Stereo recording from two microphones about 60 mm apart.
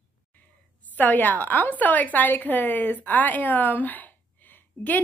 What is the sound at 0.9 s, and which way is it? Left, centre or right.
A woman's voice, left.